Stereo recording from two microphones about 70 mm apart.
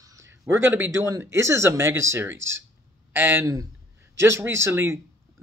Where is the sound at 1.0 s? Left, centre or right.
Right.